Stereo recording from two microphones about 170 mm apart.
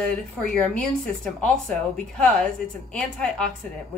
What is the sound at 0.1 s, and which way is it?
A woman's voice, 5° left (ahead or behind).